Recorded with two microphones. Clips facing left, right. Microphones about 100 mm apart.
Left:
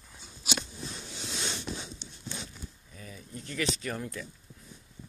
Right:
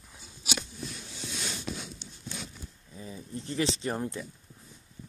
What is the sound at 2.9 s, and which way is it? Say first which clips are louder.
Speech: right 5 dB; 25° right (ahead or behind).